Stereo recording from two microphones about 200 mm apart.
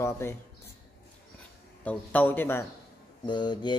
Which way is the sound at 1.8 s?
10° left (ahead or behind).